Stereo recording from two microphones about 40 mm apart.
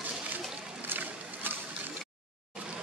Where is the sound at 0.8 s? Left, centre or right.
Right.